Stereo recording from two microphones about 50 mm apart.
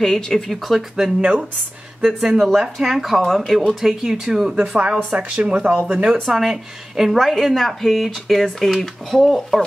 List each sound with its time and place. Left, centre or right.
0.0 s speech: centre
2.0 s speech: centre
3.2 s speech: centre
4.7 s speech: right
6.2 s speech: centre